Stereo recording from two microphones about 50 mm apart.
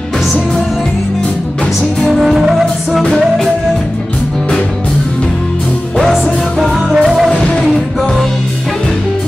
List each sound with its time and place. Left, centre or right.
2.1 s music: centre
6.9 s music: centre
7.2 s music: centre